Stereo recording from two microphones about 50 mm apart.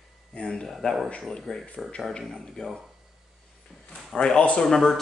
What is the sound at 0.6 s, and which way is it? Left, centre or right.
Speech, centre.